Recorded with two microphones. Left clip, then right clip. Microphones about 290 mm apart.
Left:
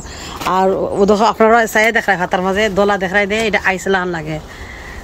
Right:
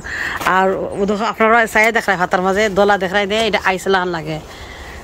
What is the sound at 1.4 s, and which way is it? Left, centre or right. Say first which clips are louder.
Speech: right 3 dB; centre.